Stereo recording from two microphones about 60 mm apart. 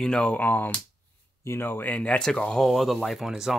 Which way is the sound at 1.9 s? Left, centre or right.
Centre.